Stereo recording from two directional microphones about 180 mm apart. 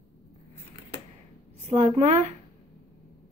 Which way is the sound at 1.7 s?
40° right (ahead or behind).